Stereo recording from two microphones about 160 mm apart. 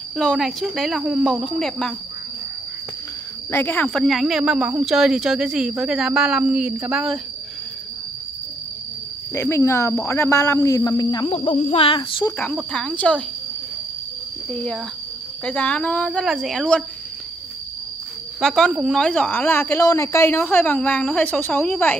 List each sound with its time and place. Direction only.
0.2 s speech: centre (ahead or behind)
3.5 s speech: 15° left (ahead or behind); by 7.2 s 5° right (ahead or behind)
9.3 s a woman's voice: 15° left (ahead or behind)
11.3 s cricket: 40° left (ahead or behind)
12.5 s a woman's voice: 5° left (ahead or behind)
14.5 s a woman's voice: 5° left (ahead or behind)
18.4 s a woman's voice: centre (ahead or behind)